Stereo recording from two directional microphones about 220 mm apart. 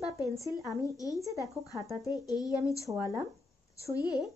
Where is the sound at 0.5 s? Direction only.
15° right (ahead or behind).